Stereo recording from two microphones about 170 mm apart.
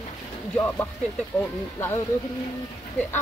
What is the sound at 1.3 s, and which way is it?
Speech, 15° left (ahead or behind).